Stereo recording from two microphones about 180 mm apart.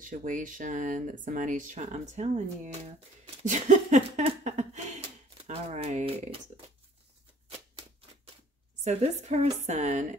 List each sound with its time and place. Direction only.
0.0 s a woman's voice: 45° right (ahead or behind)
8.8 s a woman's voice: 40° right (ahead or behind)